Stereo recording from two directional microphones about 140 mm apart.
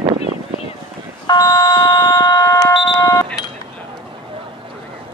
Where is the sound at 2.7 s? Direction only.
35° left (ahead or behind).